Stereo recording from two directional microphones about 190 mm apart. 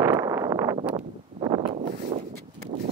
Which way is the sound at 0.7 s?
30° right (ahead or behind).